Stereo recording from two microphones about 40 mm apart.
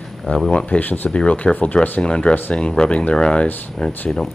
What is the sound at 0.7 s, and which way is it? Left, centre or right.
Speech, left.